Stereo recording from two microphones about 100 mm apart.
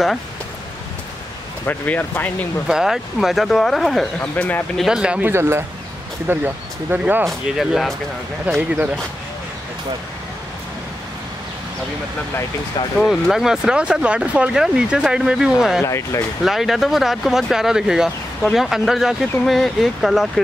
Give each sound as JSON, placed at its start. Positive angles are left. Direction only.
{"t": 1.7, "sound": "speech", "side_deg": 20}
{"t": 2.7, "sound": "speech", "side_deg": -5}
{"t": 4.2, "sound": "speech", "side_deg": 20}
{"t": 4.7, "sound": "speech", "side_deg": -5}
{"t": 5.3, "sound": "speech", "side_deg": -25}
{"t": 7.2, "sound": "speech", "side_deg": 0}
{"t": 8.5, "sound": "speech", "side_deg": -15}
{"t": 13.0, "sound": "speech", "side_deg": -5}
{"t": 15.8, "sound": "speech", "side_deg": 30}
{"t": 16.4, "sound": "speech", "side_deg": -5}